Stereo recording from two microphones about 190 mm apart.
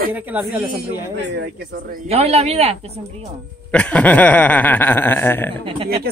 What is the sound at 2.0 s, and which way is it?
Speech, 30° right (ahead or behind).